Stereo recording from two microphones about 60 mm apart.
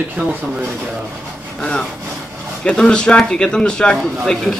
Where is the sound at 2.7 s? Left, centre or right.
Centre.